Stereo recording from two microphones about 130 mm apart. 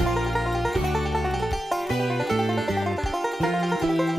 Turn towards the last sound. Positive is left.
turn(degrees=0)  # may be behind; listen again after turning